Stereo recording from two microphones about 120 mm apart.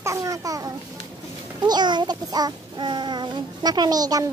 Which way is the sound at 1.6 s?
35° right (ahead or behind).